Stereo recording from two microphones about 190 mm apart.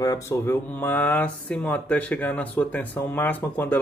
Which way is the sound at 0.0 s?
15° left (ahead or behind).